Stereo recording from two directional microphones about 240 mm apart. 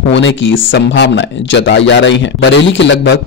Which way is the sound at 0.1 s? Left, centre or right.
Left.